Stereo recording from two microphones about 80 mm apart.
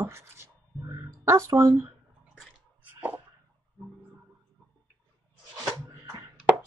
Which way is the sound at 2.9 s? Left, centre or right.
Right.